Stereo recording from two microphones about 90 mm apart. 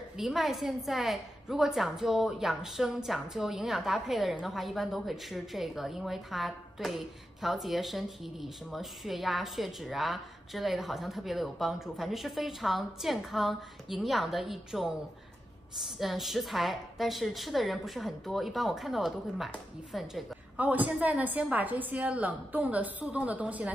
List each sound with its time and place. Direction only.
0.2 s a woman's voice: 5° right (ahead or behind)
16.0 s a woman's voice: centre (ahead or behind)
20.5 s a woman's voice: 15° right (ahead or behind)